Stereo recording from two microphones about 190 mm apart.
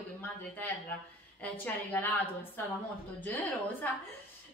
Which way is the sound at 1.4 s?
10° left (ahead or behind).